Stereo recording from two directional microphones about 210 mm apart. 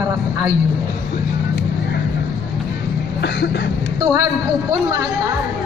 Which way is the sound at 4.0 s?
15° right (ahead or behind).